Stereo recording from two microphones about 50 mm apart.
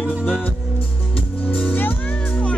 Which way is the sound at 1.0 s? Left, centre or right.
Left.